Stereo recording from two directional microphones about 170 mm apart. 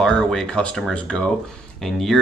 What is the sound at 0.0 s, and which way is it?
Speech, 5° left (ahead or behind).